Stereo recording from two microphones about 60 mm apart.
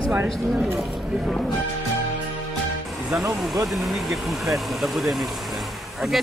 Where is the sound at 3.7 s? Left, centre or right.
Centre.